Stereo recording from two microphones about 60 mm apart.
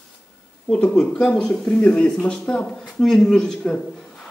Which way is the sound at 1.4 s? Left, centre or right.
Centre.